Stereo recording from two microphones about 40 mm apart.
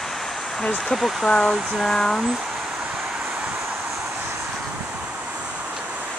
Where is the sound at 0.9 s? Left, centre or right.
Centre.